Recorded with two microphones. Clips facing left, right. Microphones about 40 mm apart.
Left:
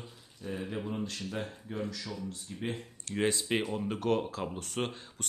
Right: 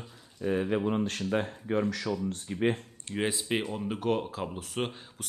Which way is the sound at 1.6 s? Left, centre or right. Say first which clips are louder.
Right 9 dB; right.